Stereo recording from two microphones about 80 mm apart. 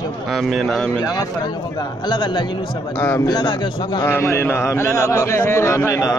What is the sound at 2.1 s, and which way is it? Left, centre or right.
A man's voice, left.